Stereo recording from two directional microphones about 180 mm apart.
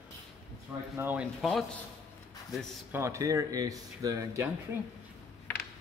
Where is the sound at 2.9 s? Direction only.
15° right (ahead or behind).